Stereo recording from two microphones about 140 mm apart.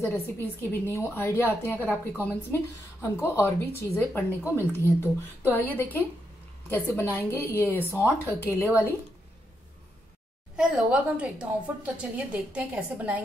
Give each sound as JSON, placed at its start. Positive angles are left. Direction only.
{"t": 0.0, "sound": "a woman's voice", "side_deg": 15}
{"t": 10.5, "sound": "a woman's voice", "side_deg": -5}